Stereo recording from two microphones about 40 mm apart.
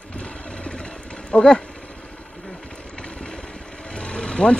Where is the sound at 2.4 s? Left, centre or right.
Left.